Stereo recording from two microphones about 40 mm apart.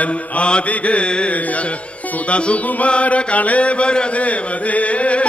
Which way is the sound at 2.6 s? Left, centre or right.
Left.